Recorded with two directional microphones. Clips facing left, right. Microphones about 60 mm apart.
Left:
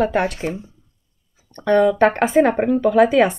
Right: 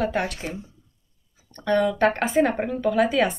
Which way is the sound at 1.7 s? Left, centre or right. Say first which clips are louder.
Left 6 dB; left.